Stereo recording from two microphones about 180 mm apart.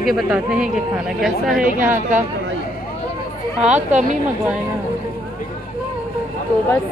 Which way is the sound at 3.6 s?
40° right (ahead or behind).